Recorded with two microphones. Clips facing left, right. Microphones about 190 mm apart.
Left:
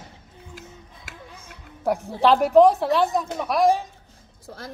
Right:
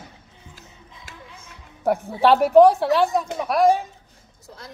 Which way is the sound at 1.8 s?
Centre (ahead or behind).